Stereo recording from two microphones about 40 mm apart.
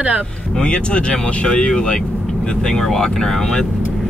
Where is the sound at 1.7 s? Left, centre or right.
Centre.